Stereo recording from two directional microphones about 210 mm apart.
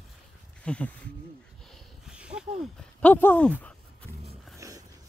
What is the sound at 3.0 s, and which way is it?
Speech, 5° left (ahead or behind).